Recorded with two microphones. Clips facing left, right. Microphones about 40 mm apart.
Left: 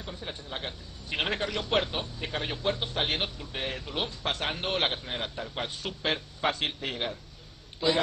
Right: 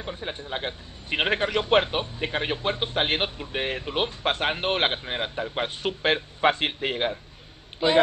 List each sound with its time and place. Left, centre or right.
0.0 s a man's voice: right